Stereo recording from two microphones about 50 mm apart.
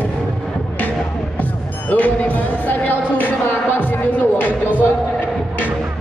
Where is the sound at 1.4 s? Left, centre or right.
Left.